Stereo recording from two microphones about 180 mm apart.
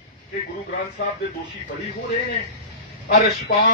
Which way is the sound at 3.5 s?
55° left (ahead or behind).